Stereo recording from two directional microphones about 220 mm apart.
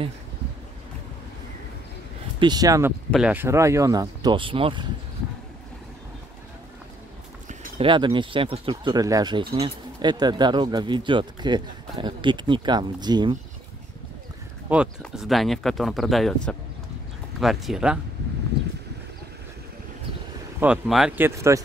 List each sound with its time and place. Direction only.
2.4 s speech: 15° right (ahead or behind)
3.1 s speech: 5° right (ahead or behind); by 4.8 s 25° right (ahead or behind)
7.4 s speech: 25° right (ahead or behind)
15.0 s speech: centre (ahead or behind)
20.6 s speech: 5° right (ahead or behind)
21.5 s speech: 15° right (ahead or behind)